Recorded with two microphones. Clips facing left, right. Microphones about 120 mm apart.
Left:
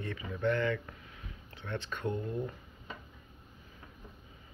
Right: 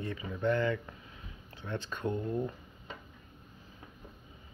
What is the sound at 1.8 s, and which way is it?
Speech, 35° right (ahead or behind).